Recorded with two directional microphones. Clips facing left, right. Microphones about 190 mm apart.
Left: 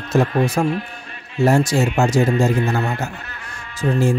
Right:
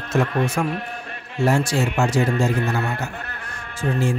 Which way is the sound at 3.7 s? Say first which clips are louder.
Left 4 dB; 40° left (ahead or behind).